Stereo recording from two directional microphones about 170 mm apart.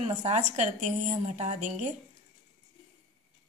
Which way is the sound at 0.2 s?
45° right (ahead or behind).